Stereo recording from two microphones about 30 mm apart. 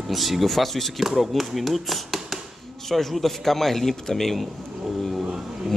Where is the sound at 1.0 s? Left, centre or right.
Centre.